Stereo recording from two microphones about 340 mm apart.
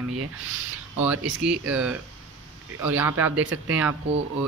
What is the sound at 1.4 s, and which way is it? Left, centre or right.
Speech, centre.